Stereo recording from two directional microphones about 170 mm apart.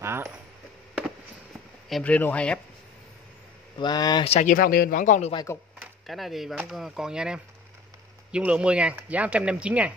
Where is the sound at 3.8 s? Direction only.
25° left (ahead or behind).